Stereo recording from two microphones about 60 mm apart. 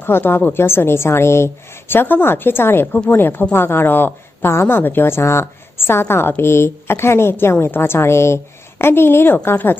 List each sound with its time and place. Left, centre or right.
0.0 s a woman's voice: left